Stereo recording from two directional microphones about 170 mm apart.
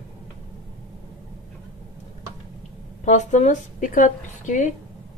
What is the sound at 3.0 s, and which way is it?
A woman's voice, 45° left (ahead or behind).